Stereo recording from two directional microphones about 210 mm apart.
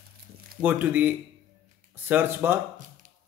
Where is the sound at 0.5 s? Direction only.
10° right (ahead or behind).